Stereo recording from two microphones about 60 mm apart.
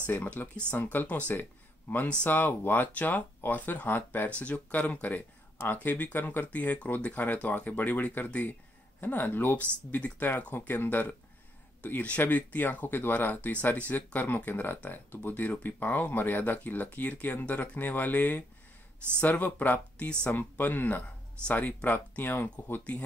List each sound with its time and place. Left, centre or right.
0.0 s speech: left
4.4 s speech: left